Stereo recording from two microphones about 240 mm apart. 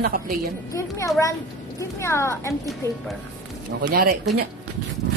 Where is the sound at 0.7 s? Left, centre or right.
Centre.